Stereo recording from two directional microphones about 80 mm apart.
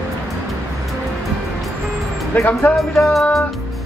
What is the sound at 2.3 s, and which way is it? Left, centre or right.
Speech, left.